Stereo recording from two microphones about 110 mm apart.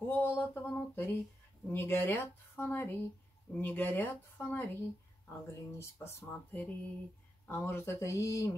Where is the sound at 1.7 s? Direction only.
20° left (ahead or behind).